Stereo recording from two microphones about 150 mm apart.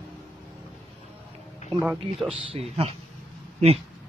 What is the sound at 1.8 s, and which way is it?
Speech, 5° right (ahead or behind).